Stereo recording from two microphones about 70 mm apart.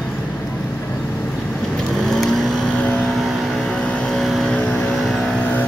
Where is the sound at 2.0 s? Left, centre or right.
Centre.